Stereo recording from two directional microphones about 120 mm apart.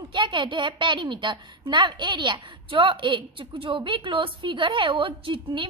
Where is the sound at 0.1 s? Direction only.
40° right (ahead or behind).